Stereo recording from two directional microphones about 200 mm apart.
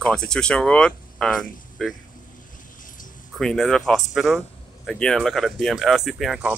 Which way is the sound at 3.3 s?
5° left (ahead or behind).